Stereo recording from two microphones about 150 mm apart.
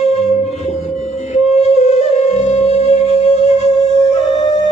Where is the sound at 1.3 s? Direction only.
50° left (ahead or behind).